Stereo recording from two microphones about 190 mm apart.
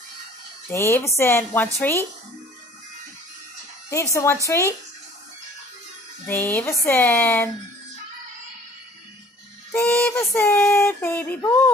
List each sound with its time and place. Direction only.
0.7 s a woman's voice: 15° left (ahead or behind)
3.9 s a woman's voice: 15° left (ahead or behind)
6.2 s a woman's voice: 10° left (ahead or behind)
9.7 s a sound: 10° left (ahead or behind)